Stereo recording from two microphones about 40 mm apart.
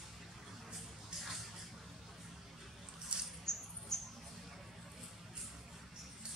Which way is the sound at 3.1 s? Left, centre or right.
Right.